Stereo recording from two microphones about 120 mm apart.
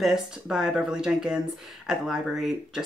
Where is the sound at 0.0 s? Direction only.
5° right (ahead or behind).